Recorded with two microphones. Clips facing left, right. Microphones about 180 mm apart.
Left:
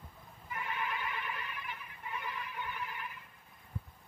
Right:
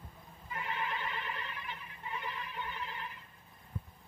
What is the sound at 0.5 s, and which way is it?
Goat, 25° right (ahead or behind).